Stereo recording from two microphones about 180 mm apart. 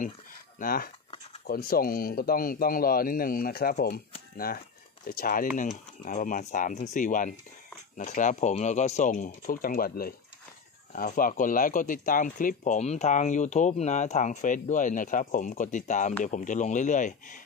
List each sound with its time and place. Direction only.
0.6 s speech: 55° left (ahead or behind)
5.0 s speech: 50° left (ahead or behind)